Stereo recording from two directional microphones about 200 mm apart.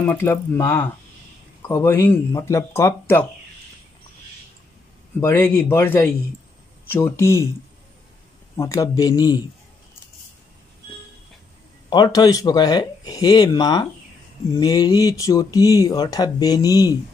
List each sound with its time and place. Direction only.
0.0 s speech: 10° left (ahead or behind)
5.2 s speech: 10° left (ahead or behind)
8.5 s speech: 15° left (ahead or behind)
11.9 s speech: 20° left (ahead or behind)